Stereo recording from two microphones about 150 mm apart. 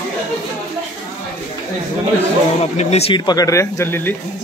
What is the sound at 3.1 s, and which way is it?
Speech, 25° left (ahead or behind).